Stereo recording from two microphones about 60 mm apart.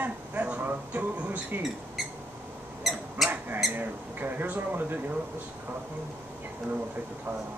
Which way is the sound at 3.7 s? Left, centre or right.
Right.